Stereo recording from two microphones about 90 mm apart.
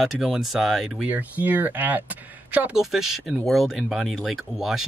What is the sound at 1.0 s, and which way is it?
Speech, 20° right (ahead or behind).